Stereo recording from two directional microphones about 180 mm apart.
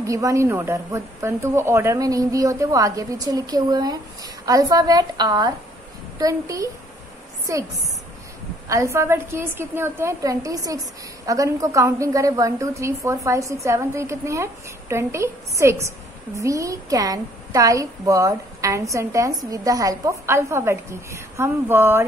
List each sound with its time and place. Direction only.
0.0 s a woman's voice: 20° right (ahead or behind)
8.6 s a woman's voice: 15° right (ahead or behind)